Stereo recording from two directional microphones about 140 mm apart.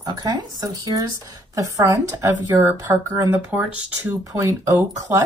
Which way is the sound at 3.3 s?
15° right (ahead or behind).